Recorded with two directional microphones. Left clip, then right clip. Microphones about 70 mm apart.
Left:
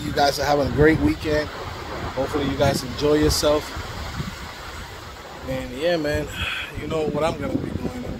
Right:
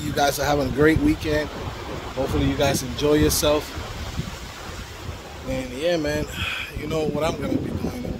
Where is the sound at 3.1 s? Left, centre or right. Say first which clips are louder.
Left 1 dB; right.